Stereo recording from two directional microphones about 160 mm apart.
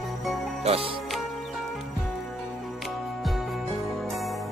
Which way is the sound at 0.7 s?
35° right (ahead or behind).